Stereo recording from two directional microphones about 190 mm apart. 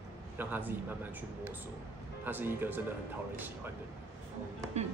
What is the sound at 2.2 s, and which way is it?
Speech, 10° right (ahead or behind).